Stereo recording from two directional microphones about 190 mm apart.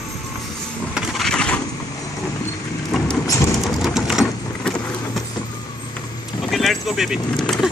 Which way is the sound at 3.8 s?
Centre (ahead or behind).